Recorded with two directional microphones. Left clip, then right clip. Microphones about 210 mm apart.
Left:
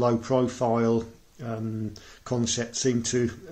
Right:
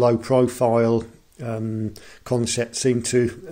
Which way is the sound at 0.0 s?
35° right (ahead or behind).